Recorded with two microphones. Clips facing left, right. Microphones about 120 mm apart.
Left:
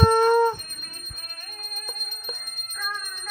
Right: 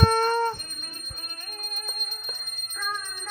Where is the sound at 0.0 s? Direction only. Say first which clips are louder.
Left 5 dB; 10° left (ahead or behind).